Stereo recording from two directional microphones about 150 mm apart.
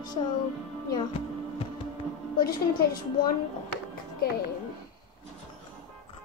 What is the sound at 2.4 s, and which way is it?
Speech, 80° left.